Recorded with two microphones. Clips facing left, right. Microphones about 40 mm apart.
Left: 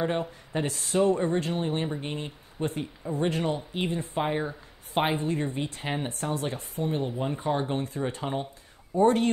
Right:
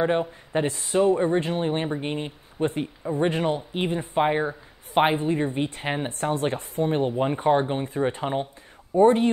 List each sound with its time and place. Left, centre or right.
0.0 s speech: right
6.1 s speech: right
7.6 s speech: right